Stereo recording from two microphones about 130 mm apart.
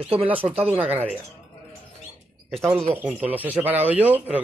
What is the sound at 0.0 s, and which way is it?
Speech, 45° right (ahead or behind).